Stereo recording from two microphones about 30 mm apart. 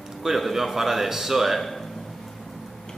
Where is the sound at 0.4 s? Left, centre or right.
Centre.